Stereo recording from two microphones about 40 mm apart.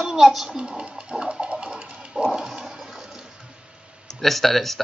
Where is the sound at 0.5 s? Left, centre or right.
Centre.